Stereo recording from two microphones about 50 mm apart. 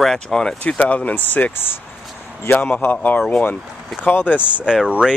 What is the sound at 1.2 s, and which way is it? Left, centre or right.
A man's voice, left.